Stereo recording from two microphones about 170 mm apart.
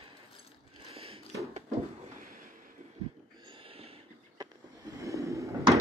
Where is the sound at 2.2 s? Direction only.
55° right (ahead or behind).